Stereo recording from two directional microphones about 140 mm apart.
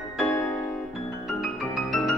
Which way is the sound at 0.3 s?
15° left (ahead or behind).